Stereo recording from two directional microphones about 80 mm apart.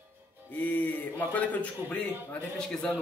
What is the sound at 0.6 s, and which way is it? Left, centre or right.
A woman's voice, centre.